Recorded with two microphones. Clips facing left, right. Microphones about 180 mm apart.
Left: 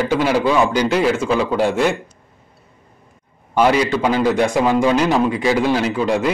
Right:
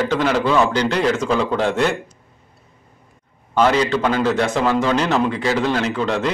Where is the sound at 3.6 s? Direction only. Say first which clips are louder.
Left 1 dB; 10° left (ahead or behind).